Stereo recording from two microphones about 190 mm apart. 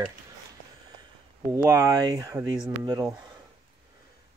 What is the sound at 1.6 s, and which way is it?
Speech, 15° right (ahead or behind).